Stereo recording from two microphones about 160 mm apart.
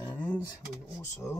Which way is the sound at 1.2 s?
Centre (ahead or behind).